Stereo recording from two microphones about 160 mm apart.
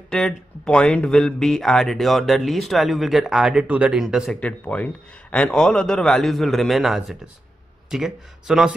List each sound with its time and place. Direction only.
0.1 s speech: 5° left (ahead or behind)